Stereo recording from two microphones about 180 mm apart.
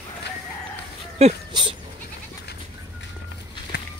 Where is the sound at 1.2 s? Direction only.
30° right (ahead or behind).